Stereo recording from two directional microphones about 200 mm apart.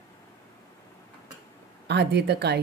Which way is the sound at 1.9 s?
55° right (ahead or behind).